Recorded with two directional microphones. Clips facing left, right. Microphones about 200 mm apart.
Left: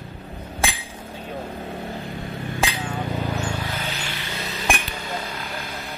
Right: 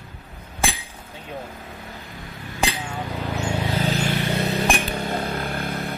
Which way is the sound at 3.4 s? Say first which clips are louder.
Right 4 dB; 25° right (ahead or behind).